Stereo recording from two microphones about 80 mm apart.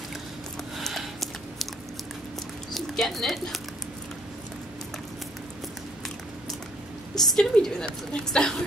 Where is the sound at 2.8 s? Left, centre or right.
Centre.